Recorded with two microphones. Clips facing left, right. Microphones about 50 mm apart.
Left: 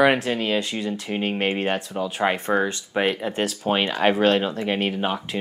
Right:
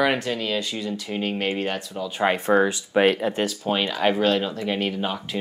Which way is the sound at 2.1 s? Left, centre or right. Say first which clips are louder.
Right 3 dB; centre.